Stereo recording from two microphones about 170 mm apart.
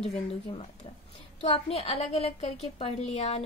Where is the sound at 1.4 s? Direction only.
35° left (ahead or behind).